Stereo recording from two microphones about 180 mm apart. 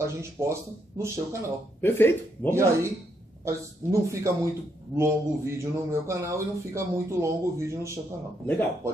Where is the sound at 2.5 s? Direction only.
15° right (ahead or behind).